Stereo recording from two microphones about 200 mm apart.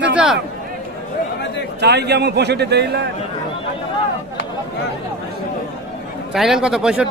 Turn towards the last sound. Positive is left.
turn(degrees=-5)  # may be behind; listen again after turning